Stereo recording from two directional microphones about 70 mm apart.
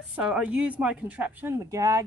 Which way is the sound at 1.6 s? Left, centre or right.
Right.